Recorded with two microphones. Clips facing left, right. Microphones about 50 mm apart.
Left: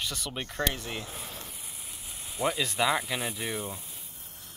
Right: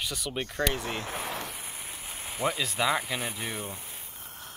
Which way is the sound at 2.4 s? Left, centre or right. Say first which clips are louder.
Left 1 dB; centre.